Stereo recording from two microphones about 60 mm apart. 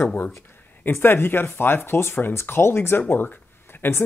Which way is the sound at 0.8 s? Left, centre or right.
Left.